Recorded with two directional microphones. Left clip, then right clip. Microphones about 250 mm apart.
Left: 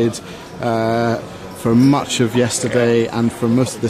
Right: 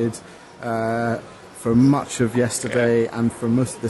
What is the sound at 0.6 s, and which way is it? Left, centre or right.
Speech, right.